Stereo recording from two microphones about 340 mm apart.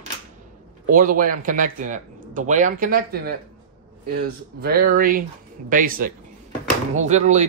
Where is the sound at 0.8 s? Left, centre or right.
Right.